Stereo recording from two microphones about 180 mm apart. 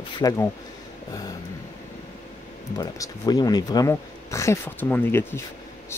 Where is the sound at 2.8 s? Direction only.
20° left (ahead or behind).